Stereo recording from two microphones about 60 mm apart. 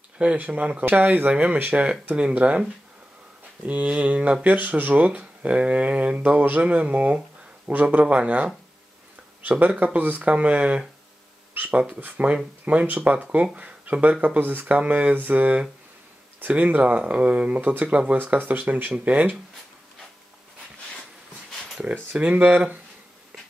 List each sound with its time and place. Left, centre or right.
0.2 s speech: right
3.6 s speech: right
11.5 s a sound: right
12.0 s speech: right
21.8 s speech: right